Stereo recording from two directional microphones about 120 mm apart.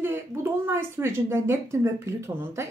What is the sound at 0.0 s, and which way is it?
Speech, 20° right (ahead or behind).